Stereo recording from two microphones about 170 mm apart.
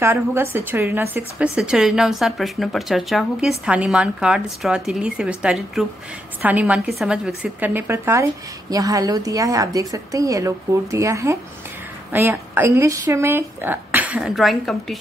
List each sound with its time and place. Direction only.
0.0 s a woman's voice: 15° right (ahead or behind)